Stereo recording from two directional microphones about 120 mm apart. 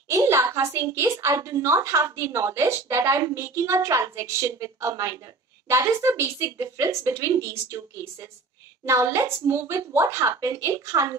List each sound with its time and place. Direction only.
0.1 s a woman's voice: 25° right (ahead or behind)